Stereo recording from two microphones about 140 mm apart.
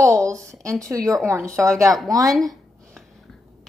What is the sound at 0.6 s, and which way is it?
Speech, 20° right (ahead or behind).